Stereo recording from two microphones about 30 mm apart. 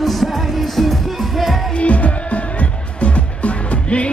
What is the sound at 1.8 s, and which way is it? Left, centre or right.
Music, left.